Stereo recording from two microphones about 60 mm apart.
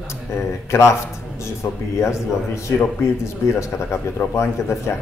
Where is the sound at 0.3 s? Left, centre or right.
Left.